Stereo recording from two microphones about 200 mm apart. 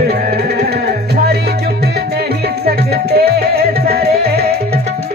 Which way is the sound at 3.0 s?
50° right (ahead or behind).